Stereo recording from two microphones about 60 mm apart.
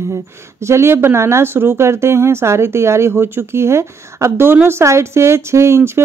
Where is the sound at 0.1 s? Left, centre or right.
Right.